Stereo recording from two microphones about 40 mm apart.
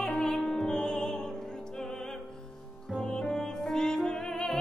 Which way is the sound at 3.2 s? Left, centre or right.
Centre.